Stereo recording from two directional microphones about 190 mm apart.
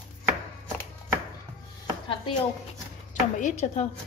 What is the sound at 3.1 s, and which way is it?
Speech, 40° left (ahead or behind).